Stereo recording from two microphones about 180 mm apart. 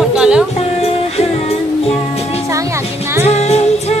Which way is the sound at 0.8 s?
35° left (ahead or behind).